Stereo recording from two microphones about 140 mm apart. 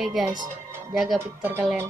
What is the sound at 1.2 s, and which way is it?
Speech, 15° right (ahead or behind).